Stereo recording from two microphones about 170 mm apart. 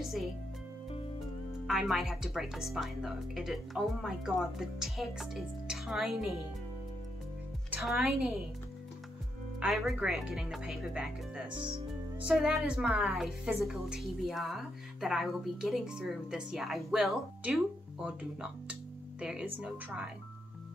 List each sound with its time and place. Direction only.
0.0 s music: centre (ahead or behind)
1.7 s a woman's voice: centre (ahead or behind)
7.7 s a woman's voice: centre (ahead or behind)
9.6 s a woman's voice: centre (ahead or behind)
11.5 s speech: 30° right (ahead or behind)
12.3 s a woman's voice: 5° right (ahead or behind)